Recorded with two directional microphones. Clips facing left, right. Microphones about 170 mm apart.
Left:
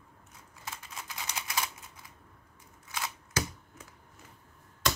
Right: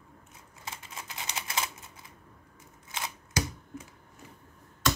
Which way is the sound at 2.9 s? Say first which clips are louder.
Right 1 dB; 20° right (ahead or behind).